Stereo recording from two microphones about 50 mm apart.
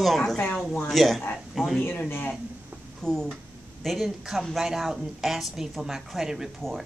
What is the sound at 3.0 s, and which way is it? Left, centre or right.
A woman's voice, centre.